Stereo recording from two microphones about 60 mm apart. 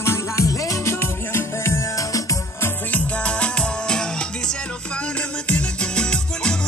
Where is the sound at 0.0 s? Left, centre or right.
Left.